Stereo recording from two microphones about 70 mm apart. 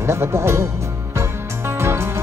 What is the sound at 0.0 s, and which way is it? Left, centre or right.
Speech, right.